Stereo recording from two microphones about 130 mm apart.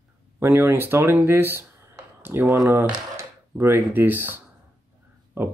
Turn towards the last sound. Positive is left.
turn(degrees=-15)  # may be behind; listen again after turning